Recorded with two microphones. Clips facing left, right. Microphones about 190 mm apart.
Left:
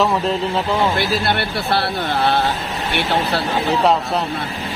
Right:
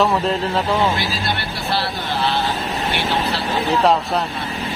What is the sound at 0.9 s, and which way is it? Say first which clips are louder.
Speech: left 5 dB; 60° left (ahead or behind).